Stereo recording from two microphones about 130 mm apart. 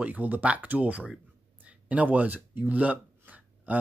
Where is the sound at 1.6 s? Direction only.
10° right (ahead or behind).